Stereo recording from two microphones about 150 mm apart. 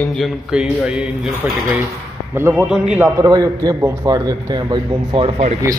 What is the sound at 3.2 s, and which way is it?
A man's voice, 25° right (ahead or behind).